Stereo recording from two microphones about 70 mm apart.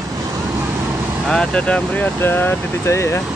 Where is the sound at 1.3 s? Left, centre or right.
Centre.